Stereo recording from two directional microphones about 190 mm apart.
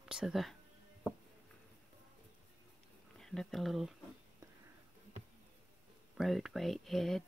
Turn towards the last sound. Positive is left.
turn(degrees=0)  # may be behind; listen again after turning